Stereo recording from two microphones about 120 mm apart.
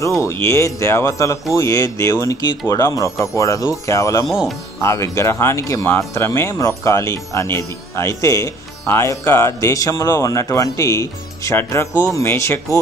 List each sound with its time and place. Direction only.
0.0 s speech: 25° left (ahead or behind)